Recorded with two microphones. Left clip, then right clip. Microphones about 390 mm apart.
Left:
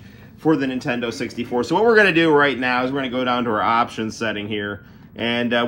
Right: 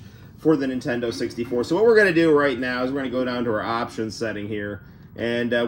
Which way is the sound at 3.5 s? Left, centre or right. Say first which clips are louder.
Left 6 dB; left.